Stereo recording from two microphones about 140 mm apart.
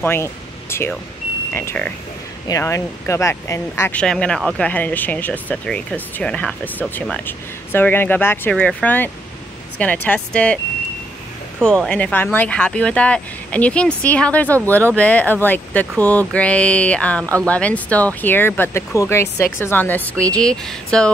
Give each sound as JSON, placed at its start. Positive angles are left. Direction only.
{"t": 0.0, "sound": "music", "side_deg": 15}
{"t": 1.5, "sound": "speech", "side_deg": 15}
{"t": 4.0, "sound": "speech", "side_deg": 5}
{"t": 4.6, "sound": "speech", "side_deg": 10}
{"t": 11.6, "sound": "speech", "side_deg": 5}